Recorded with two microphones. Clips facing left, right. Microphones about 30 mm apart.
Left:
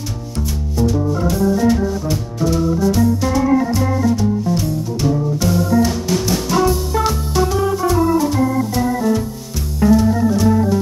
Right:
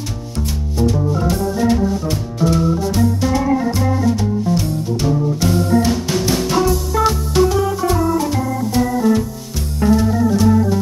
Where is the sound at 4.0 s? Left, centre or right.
Centre.